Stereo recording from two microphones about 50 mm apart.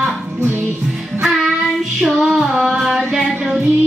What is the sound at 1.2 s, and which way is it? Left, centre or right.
Music, centre.